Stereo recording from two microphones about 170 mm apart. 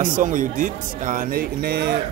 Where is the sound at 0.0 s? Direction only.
50° right (ahead or behind).